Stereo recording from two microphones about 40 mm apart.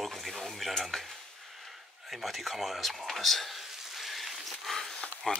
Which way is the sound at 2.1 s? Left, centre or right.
Centre.